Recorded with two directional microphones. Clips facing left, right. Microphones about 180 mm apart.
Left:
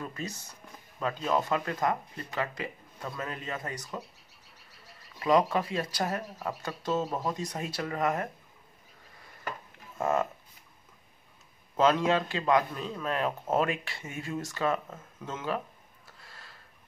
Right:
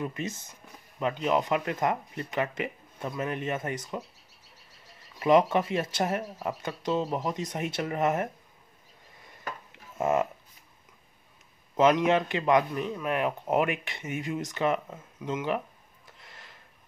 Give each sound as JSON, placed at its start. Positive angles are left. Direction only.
{"t": 0.0, "sound": "speech", "side_deg": -20}
{"t": 5.2, "sound": "speech", "side_deg": -25}
{"t": 9.9, "sound": "speech", "side_deg": -20}
{"t": 11.7, "sound": "a man's voice", "side_deg": -20}
{"t": 16.2, "sound": "a sound", "side_deg": -20}